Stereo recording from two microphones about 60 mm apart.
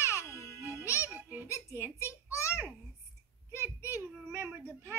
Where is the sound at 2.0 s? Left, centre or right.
Left.